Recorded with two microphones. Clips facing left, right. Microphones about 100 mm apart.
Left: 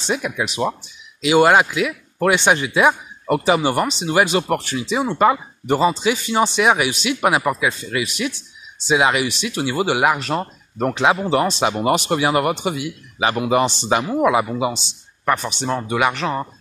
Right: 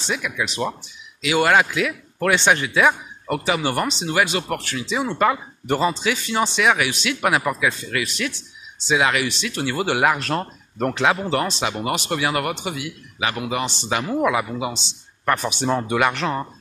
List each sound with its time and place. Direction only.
0.0 s speech: 25° left (ahead or behind)
0.5 s speech: 15° left (ahead or behind)
1.7 s speech: 10° left (ahead or behind); by 14.0 s 30° left (ahead or behind)
14.0 s speech: 15° left (ahead or behind)
14.7 s a man's voice: 10° left (ahead or behind)
15.4 s speech: 5° right (ahead or behind)